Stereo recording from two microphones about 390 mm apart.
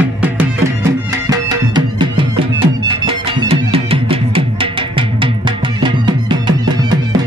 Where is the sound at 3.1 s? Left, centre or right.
Centre.